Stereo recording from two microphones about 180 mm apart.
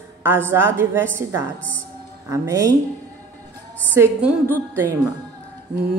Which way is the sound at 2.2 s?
15° right (ahead or behind).